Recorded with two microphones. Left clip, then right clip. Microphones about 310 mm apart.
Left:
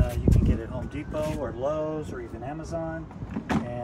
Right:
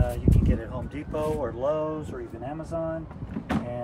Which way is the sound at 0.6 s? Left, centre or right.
Centre.